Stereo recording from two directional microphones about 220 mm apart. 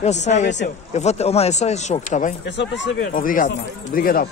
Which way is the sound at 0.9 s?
30° left (ahead or behind).